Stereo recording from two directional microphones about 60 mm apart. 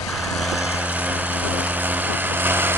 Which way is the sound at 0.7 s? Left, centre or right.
Right.